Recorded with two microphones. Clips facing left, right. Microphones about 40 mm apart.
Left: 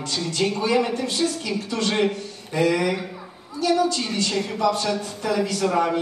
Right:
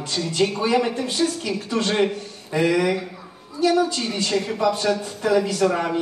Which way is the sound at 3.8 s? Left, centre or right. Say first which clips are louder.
Even; centre.